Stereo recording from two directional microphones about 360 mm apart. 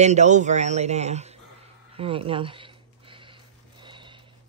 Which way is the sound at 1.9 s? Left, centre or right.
Centre.